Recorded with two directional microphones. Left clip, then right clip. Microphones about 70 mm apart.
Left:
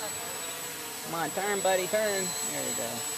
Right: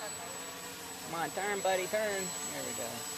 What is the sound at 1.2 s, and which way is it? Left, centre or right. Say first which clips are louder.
Speech: left 4 dB; centre.